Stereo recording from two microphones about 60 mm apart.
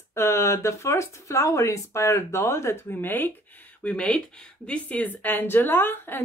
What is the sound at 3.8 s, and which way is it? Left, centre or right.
Speech, centre.